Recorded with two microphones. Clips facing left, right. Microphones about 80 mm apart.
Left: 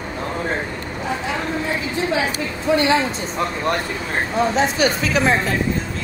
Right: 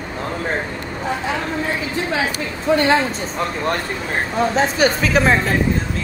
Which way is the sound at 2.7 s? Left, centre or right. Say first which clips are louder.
Right 1 dB; right.